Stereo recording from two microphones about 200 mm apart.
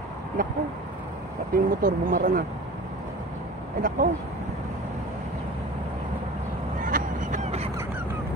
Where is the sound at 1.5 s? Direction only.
45° right (ahead or behind).